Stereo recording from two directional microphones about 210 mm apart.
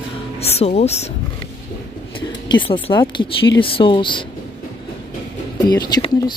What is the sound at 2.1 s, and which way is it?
Speech, 20° left (ahead or behind).